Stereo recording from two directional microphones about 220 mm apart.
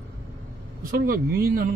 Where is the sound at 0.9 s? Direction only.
40° right (ahead or behind).